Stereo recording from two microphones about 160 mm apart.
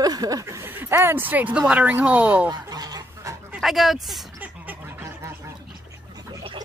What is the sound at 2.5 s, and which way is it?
Goose, 25° right (ahead or behind).